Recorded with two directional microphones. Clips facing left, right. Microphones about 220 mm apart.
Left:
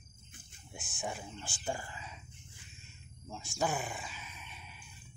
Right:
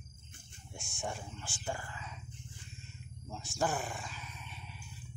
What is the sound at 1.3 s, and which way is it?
Speech, 15° left (ahead or behind).